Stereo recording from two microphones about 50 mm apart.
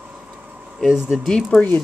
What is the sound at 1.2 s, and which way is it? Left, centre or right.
Speech, centre.